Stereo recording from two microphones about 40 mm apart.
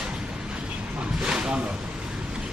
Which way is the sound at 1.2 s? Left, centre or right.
Centre.